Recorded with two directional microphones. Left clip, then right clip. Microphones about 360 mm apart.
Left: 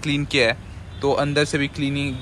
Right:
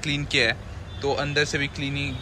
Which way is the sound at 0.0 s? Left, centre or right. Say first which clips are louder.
Left 3 dB; centre.